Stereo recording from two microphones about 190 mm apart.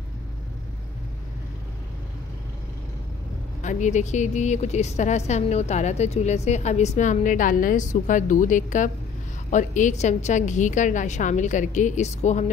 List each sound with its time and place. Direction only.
3.6 s a woman's voice: 40° left (ahead or behind)